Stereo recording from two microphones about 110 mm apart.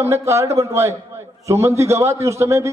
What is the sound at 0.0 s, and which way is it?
Speech, 25° right (ahead or behind).